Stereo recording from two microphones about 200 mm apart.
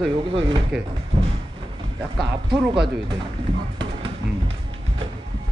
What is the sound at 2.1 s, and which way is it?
Speech, 25° right (ahead or behind).